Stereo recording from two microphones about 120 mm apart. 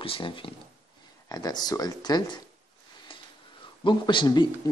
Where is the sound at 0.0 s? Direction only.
45° left (ahead or behind).